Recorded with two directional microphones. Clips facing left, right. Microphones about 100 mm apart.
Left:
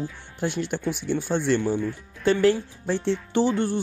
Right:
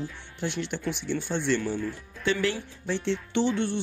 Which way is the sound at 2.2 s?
45° left (ahead or behind).